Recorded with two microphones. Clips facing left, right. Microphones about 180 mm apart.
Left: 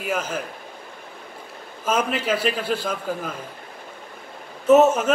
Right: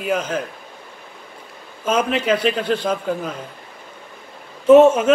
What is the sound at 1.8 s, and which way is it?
A man's voice, 5° left (ahead or behind).